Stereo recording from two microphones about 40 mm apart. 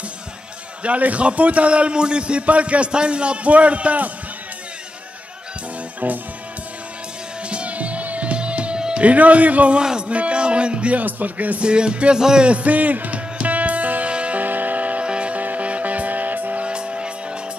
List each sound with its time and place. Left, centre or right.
0.8 s a man's voice: right
6.0 s music: right
7.4 s music: right
9.0 s a man's voice: right
9.8 s music: right
11.0 s a man's voice: right
11.6 s music: right
12.4 s music: right
14.4 s music: right
16.6 s music: right